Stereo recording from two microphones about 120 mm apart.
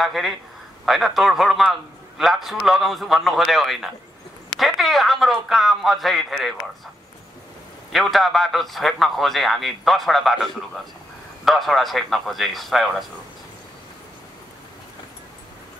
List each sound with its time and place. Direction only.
0.0 s a man's voice: centre (ahead or behind)
7.9 s a man's voice: centre (ahead or behind)